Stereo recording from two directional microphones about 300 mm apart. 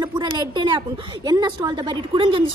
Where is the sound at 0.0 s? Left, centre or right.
Centre.